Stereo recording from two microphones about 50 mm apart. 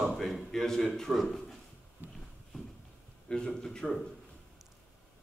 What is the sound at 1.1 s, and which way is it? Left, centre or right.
Speech, centre.